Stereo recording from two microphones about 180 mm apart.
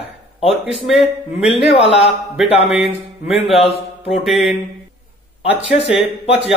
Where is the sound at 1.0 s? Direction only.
35° left (ahead or behind).